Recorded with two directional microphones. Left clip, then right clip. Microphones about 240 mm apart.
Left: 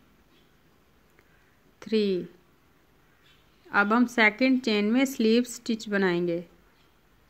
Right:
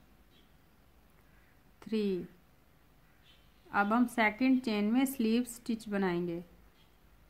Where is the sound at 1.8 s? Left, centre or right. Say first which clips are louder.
Left 8 dB; centre.